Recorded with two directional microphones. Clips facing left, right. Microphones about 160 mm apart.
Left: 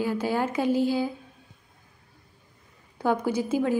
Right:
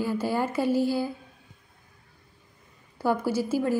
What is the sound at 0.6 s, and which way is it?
Speech, 15° left (ahead or behind).